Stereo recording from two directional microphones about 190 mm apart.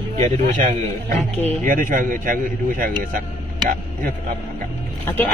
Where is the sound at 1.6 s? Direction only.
45° right (ahead or behind).